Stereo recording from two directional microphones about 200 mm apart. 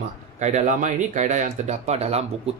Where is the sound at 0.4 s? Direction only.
35° right (ahead or behind).